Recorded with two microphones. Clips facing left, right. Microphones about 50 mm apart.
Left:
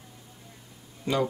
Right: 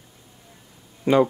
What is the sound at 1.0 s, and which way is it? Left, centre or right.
Speech, right.